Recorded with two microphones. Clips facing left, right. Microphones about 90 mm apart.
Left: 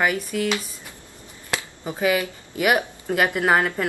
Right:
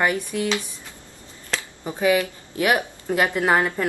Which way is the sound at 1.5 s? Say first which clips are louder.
Even; 10° left (ahead or behind).